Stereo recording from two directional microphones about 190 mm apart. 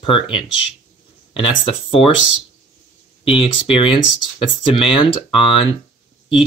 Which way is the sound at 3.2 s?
30° left (ahead or behind).